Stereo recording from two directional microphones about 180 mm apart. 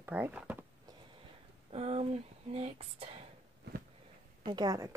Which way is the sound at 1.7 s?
35° right (ahead or behind).